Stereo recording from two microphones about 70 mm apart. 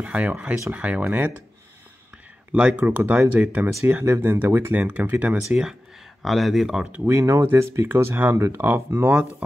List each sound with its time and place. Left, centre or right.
0.0 s speech: centre
2.5 s speech: right
4.8 s speech: right
6.2 s speech: centre
7.1 s speech: right